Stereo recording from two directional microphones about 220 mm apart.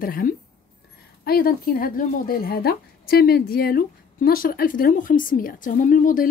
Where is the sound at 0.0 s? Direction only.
40° left (ahead or behind).